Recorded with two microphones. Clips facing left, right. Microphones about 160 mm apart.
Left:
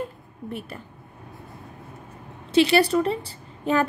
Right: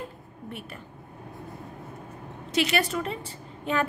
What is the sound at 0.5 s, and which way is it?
Speech, 40° left (ahead or behind).